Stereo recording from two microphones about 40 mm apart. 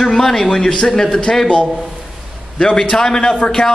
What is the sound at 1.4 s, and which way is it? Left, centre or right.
A man's voice, left.